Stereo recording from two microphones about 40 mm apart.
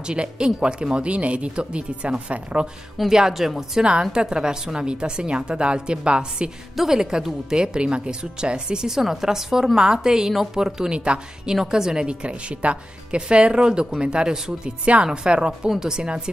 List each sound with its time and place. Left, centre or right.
0.0 s a woman's voice: right
3.1 s speech: centre
3.8 s a woman's voice: right
6.8 s speech: centre
11.5 s a woman's voice: centre